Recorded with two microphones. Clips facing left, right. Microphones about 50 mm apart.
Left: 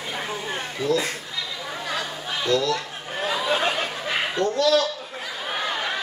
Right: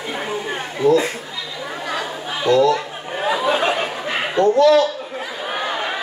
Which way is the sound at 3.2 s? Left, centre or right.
Centre.